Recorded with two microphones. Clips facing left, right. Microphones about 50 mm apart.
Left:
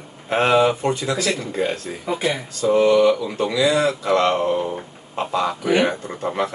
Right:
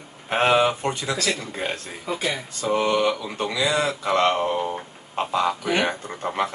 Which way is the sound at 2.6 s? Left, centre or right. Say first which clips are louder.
Left 7 dB; right.